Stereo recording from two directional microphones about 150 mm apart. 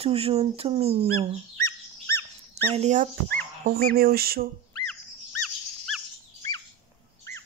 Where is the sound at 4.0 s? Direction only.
90° right.